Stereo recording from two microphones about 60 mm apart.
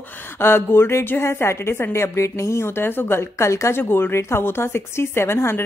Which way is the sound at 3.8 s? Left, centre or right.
Left.